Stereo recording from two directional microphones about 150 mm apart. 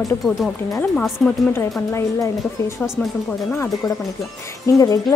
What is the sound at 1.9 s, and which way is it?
Speech, 15° left (ahead or behind).